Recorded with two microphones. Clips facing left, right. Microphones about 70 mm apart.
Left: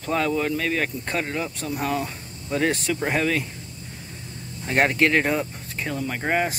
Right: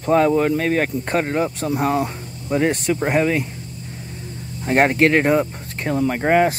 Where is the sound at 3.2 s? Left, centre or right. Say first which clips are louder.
Right 5 dB; right.